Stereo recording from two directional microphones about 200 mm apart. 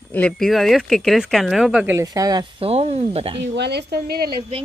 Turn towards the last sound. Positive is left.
turn(degrees=-50)  # may be behind; listen again after turning